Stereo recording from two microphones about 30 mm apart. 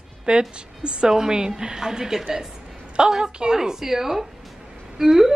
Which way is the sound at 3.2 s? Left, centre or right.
Right.